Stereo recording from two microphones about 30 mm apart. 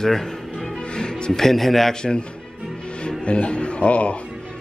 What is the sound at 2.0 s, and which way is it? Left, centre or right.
Speech, left.